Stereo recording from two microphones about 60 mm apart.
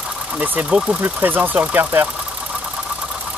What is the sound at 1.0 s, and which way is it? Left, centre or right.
Speech, right.